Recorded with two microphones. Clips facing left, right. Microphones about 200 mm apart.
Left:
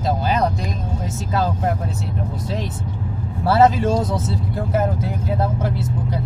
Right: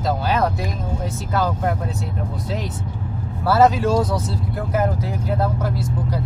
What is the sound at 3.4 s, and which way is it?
Speech, 25° left (ahead or behind).